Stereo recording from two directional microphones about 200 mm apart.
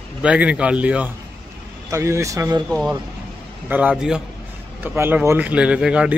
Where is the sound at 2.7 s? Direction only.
5° left (ahead or behind).